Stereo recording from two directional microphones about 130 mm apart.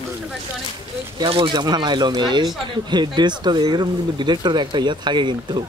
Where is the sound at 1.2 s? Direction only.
40° right (ahead or behind).